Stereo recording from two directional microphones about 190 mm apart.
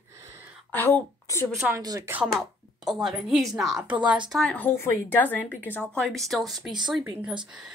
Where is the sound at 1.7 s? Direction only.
15° right (ahead or behind).